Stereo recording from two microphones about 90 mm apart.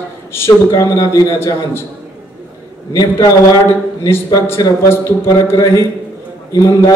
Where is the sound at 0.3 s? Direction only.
30° left (ahead or behind).